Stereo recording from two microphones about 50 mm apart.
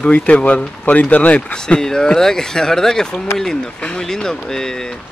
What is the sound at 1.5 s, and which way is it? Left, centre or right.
Speech, centre.